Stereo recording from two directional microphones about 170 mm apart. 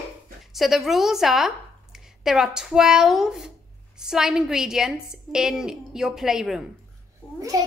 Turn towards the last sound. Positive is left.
turn(degrees=-20)  # may be behind; listen again after turning